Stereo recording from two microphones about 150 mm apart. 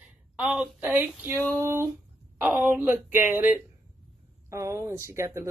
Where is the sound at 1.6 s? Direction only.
15° right (ahead or behind).